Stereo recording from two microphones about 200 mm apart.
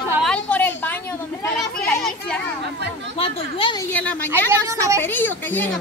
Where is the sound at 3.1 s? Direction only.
25° left (ahead or behind).